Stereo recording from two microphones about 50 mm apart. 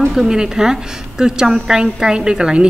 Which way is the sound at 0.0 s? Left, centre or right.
Centre.